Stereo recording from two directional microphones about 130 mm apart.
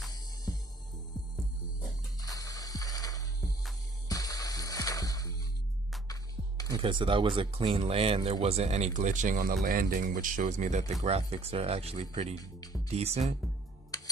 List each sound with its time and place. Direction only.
2.1 s music: 30° left (ahead or behind)
6.8 s speech: 40° right (ahead or behind)
13.9 s a sound: 30° left (ahead or behind)